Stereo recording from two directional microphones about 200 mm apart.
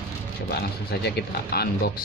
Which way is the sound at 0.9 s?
50° left (ahead or behind).